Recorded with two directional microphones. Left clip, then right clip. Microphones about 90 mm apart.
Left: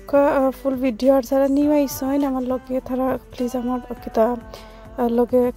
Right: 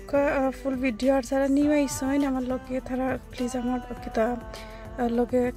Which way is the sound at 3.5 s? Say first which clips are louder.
Left 5 dB; centre (ahead or behind).